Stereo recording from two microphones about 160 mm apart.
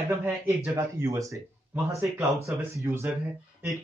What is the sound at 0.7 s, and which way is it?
A man's voice, 20° right (ahead or behind).